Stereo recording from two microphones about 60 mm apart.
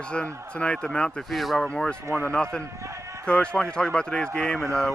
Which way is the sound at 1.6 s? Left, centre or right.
Centre.